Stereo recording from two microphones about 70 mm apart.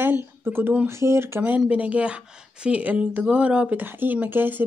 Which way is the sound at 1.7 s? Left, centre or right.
Centre.